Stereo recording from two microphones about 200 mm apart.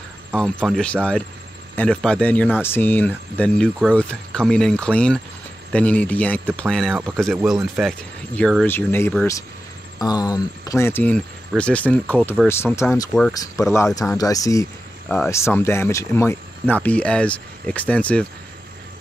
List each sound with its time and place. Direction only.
0.3 s speech: 5° left (ahead or behind)